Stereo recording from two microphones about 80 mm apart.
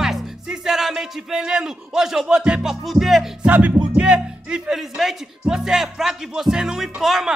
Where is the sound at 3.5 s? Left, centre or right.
Centre.